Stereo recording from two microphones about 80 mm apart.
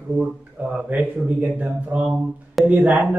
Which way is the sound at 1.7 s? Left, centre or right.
Centre.